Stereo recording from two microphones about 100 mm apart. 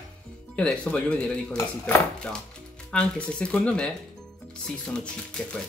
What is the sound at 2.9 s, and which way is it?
Speech, 10° left (ahead or behind).